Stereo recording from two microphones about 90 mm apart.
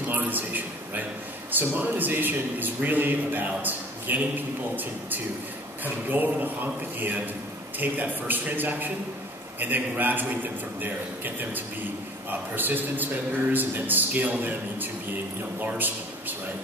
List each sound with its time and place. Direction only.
0.1 s a man's voice: 20° right (ahead or behind)